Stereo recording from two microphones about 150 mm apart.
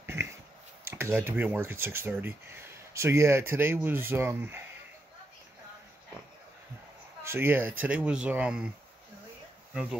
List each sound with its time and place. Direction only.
0.0 s a sound: 15° right (ahead or behind)
0.8 s speech: 15° right (ahead or behind)
7.2 s speech: 15° right (ahead or behind)